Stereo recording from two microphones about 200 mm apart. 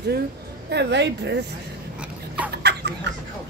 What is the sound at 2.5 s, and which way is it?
Fowl, 55° right (ahead or behind).